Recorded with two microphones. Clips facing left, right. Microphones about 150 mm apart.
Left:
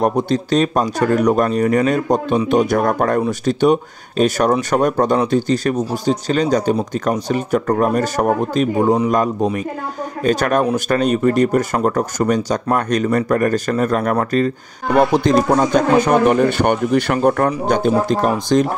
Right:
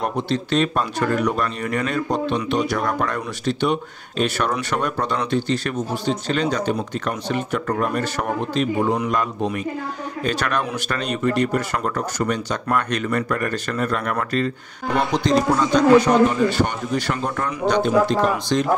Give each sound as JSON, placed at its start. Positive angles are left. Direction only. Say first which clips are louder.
{"t": 0.0, "sound": "speech", "louder": "left 6 dB", "side_deg": 45}